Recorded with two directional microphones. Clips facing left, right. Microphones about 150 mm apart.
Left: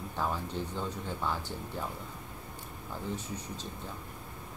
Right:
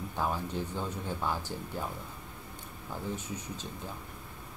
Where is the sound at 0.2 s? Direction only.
10° right (ahead or behind).